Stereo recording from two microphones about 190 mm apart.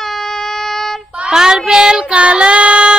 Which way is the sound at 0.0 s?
Centre (ahead or behind).